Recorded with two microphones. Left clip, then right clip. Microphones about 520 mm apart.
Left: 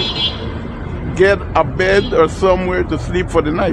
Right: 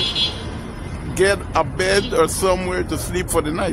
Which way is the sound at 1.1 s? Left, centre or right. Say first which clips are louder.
Left 5 dB; right.